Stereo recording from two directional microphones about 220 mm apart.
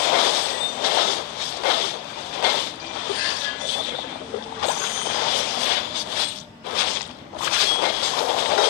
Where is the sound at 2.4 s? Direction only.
45° left (ahead or behind).